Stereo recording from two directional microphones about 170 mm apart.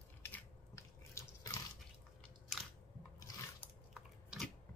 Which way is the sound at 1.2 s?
15° left (ahead or behind).